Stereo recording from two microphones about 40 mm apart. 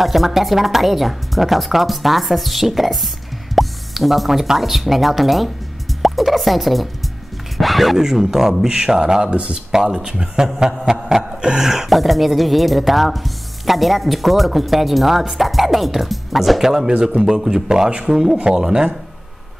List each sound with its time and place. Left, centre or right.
0.0 s a man's voice: centre
10.9 s a sound: centre
11.4 s a man's voice: centre